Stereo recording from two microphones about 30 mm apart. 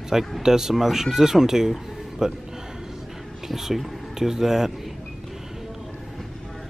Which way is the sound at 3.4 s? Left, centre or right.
Centre.